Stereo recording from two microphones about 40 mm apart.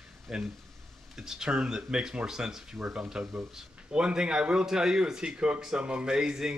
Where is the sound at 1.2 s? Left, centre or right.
Centre.